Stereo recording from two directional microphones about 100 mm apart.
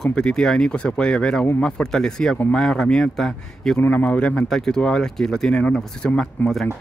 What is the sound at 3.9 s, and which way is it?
Speech, 15° left (ahead or behind).